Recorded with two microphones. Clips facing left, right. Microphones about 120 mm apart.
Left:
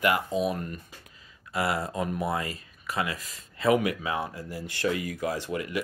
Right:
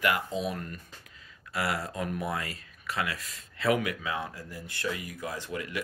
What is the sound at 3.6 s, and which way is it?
Speech, 30° left (ahead or behind).